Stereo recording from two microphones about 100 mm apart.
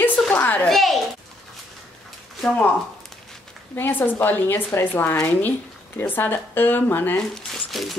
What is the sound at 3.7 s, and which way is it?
A woman's voice, 20° left (ahead or behind).